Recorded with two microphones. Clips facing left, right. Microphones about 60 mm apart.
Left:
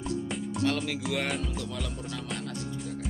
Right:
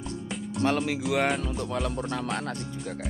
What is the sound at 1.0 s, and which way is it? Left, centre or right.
Speech, centre.